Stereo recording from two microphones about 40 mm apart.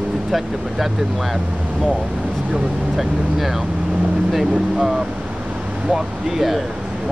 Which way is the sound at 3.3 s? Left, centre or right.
Centre.